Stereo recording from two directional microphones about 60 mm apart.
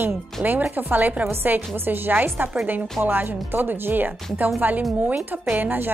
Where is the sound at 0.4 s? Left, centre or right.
Right.